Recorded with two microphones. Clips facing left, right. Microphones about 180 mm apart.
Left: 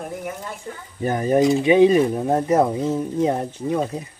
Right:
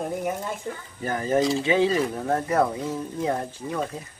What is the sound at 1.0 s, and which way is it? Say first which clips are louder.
Speech: left 5 dB; 20° left (ahead or behind).